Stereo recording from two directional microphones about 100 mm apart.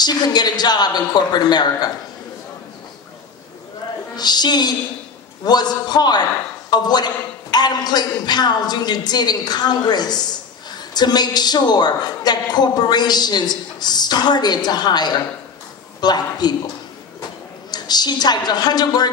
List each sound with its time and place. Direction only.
0.0 s a woman's voice: 45° left (ahead or behind)
4.2 s a woman's voice: 45° left (ahead or behind)
17.6 s a woman's voice: 45° left (ahead or behind)